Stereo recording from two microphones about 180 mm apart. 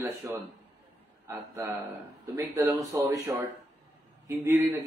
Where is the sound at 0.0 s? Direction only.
15° right (ahead or behind).